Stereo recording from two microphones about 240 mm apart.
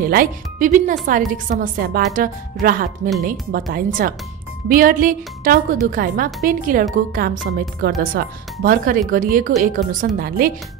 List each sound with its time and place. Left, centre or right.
0.0 s speech: right